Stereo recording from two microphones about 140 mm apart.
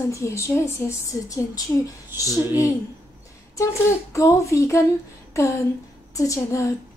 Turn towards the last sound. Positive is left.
turn(degrees=20)  # may be behind; listen again after turning